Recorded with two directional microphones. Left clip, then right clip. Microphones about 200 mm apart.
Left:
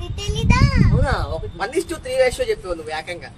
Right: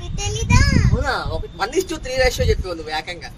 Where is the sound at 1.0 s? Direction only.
20° right (ahead or behind).